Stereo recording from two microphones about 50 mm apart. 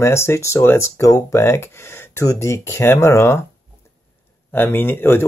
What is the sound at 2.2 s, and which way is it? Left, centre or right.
Speech, left.